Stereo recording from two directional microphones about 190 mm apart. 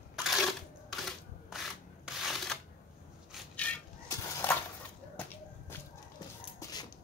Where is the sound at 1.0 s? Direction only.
Centre (ahead or behind).